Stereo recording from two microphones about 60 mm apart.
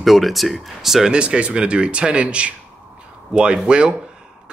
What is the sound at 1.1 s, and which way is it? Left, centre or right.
Speech, centre.